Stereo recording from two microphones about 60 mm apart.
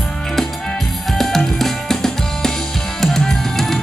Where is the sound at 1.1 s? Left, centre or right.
Centre.